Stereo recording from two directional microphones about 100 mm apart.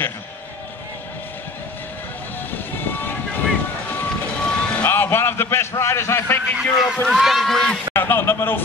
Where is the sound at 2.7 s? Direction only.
20° left (ahead or behind).